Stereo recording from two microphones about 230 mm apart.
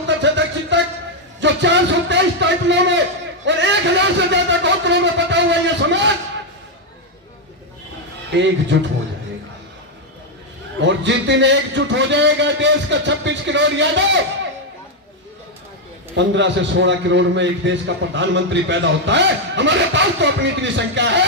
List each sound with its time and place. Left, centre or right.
0.2 s music: right
1.4 s a sound: right
3.4 s a man's voice: right
8.4 s a man's voice: right
10.8 s a man's voice: right
16.2 s a man's voice: right